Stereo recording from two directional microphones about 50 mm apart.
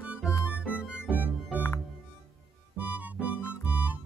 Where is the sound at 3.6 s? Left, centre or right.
Right.